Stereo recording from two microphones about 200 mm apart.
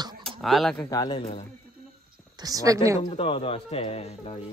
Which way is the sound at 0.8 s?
20° left (ahead or behind).